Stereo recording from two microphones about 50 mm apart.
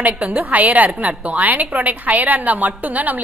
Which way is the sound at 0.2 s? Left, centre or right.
Right.